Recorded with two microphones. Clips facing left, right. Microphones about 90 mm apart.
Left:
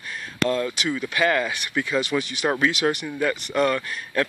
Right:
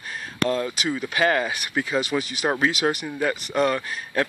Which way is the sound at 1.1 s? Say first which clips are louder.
Right 1 dB; 25° right (ahead or behind).